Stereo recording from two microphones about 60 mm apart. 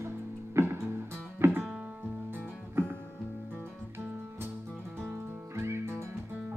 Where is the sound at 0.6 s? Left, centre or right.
Right.